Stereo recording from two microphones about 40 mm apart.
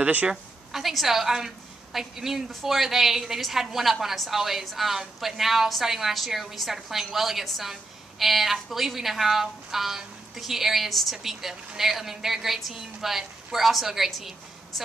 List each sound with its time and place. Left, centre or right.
0.0 s a woman's voice: right
0.7 s a woman's voice: centre